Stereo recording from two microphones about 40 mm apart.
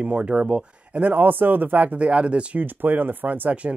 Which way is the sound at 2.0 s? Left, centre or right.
Right.